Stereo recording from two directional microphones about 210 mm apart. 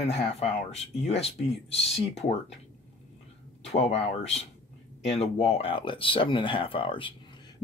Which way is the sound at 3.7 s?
30° left (ahead or behind).